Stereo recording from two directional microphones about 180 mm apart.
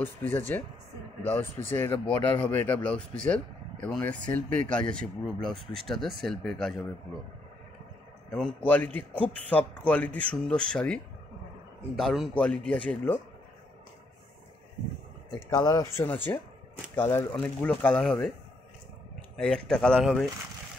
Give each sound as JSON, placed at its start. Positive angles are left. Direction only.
{"t": 0.0, "sound": "a man's voice", "side_deg": 10}
{"t": 8.3, "sound": "a man's voice", "side_deg": 5}
{"t": 12.0, "sound": "a man's voice", "side_deg": 0}
{"t": 15.3, "sound": "a man's voice", "side_deg": 20}
{"t": 19.3, "sound": "speech", "side_deg": 5}